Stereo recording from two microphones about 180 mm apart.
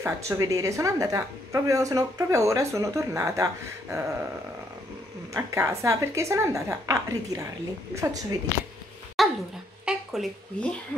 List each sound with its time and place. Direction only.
0.0 s a woman's voice: 15° right (ahead or behind)
5.3 s a woman's voice: 15° right (ahead or behind)
9.2 s dog: centre (ahead or behind)
9.8 s a sound: centre (ahead or behind)